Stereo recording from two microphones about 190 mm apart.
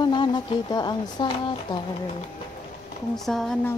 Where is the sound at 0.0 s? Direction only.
25° left (ahead or behind).